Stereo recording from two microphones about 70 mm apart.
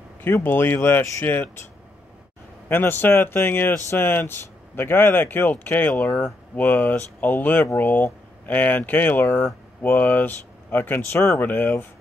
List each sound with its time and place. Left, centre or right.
0.2 s speech: left
2.7 s speech: left